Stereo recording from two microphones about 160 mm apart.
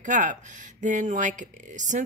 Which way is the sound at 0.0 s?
50° right (ahead or behind).